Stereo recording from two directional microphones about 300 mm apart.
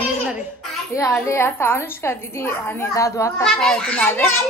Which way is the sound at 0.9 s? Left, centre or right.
Centre.